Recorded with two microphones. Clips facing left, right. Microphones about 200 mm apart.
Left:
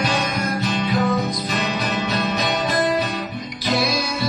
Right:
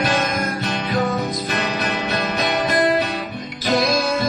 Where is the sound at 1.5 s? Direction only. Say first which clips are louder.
Right 1 dB; 60° right (ahead or behind).